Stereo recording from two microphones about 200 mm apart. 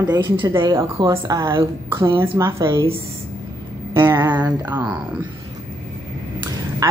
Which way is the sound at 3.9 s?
10° right (ahead or behind).